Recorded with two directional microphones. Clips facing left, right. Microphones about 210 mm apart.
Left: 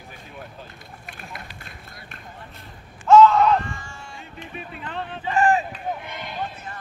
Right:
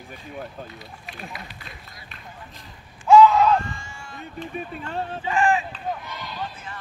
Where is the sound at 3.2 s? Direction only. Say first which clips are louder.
Even; centre (ahead or behind).